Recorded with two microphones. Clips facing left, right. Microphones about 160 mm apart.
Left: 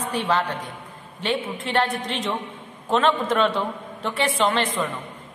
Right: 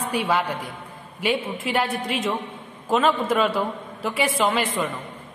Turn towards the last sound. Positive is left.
turn(degrees=-5)  # may be behind; listen again after turning